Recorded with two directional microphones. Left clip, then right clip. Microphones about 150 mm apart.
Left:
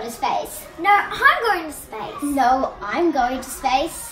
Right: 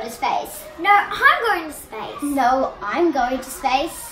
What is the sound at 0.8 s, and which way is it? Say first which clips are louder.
A child's voice: right 1 dB; centre (ahead or behind).